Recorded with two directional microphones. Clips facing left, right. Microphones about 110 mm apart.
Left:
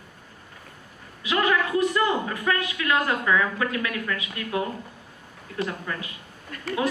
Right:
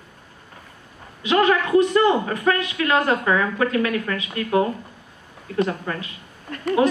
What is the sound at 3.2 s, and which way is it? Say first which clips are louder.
Speech: right 3 dB; 40° right (ahead or behind).